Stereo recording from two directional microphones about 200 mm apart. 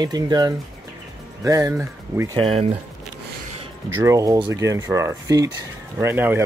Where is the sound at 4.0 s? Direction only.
15° right (ahead or behind).